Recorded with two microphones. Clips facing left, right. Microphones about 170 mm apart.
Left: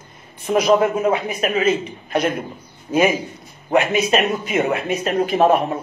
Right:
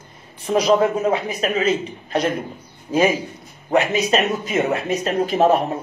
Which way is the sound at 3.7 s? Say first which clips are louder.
Left 1 dB; 35° right (ahead or behind).